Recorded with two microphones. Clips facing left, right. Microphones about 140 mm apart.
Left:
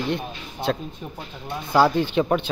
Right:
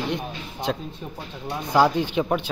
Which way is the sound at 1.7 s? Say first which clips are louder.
Left 1 dB; 15° right (ahead or behind).